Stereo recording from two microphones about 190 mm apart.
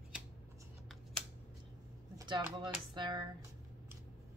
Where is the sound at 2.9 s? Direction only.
25° right (ahead or behind).